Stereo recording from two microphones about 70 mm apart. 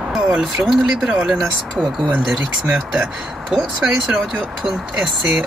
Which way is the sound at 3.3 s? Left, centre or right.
Centre.